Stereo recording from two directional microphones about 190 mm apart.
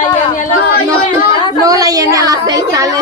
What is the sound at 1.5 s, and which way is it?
A woman's voice, 20° right (ahead or behind).